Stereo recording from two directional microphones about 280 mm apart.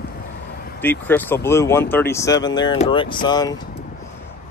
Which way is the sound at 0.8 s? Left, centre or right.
Centre.